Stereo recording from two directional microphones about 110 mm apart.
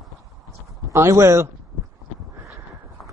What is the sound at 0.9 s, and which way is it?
Speech, 30° right (ahead or behind).